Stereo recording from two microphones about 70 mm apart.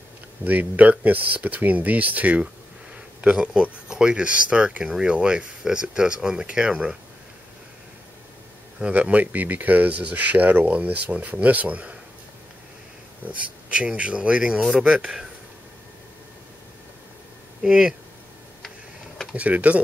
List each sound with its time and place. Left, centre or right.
0.4 s speech: right
8.7 s speech: centre
13.3 s speech: centre
17.6 s speech: centre
19.3 s speech: centre